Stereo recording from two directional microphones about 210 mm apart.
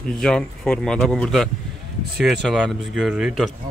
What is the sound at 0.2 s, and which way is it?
Speech, 5° left (ahead or behind).